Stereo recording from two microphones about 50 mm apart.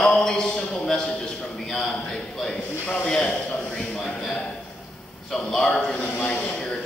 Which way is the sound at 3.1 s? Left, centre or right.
Centre.